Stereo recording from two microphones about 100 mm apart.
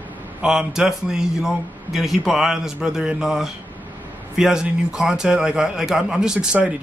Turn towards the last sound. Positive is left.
turn(degrees=-10)  # may be behind; listen again after turning